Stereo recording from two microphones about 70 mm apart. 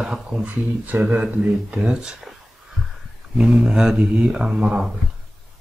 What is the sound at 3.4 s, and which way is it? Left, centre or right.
Speech, centre.